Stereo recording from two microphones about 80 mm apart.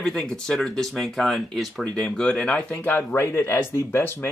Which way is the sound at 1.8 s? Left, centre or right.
Centre.